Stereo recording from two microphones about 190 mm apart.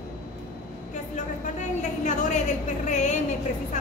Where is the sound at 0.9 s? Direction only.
40° left (ahead or behind).